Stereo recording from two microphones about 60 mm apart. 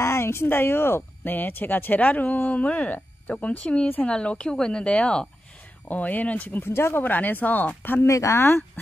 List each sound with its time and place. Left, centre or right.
0.0 s speech: left; by 5.3 s centre
5.9 s speech: left
6.6 s speech: left
8.1 s speech: left